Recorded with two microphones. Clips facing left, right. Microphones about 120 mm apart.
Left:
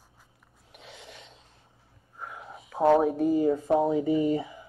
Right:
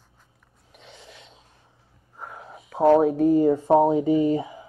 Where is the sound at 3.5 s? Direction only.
30° right (ahead or behind).